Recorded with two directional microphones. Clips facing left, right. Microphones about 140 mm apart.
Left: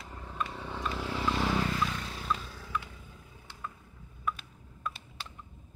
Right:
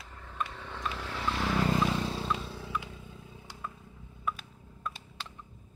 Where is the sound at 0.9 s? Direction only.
10° left (ahead or behind).